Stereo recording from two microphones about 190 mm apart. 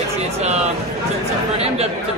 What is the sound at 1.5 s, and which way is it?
Speech, 35° right (ahead or behind).